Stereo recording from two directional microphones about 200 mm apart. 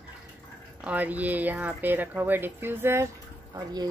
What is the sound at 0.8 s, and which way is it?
Speech, 10° right (ahead or behind).